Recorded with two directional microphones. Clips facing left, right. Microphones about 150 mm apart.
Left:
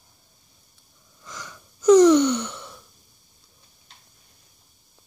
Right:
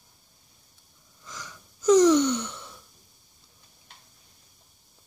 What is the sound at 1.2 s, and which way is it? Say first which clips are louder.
Gasp: left 3 dB; 65° left (ahead or behind).